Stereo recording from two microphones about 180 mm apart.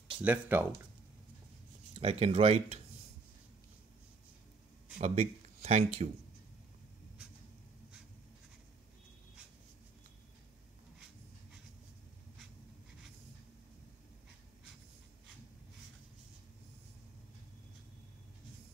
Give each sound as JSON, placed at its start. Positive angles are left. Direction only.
{"t": 0.2, "sound": "speech", "side_deg": -10}
{"t": 2.0, "sound": "speech", "side_deg": -35}
{"t": 4.9, "sound": "speech", "side_deg": -40}